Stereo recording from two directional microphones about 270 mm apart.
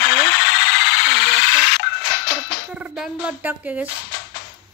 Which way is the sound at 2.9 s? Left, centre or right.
Centre.